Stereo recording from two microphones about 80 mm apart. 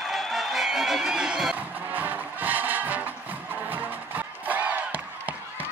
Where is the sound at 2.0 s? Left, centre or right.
Right.